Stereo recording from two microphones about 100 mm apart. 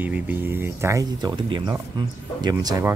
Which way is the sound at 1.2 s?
50° right (ahead or behind).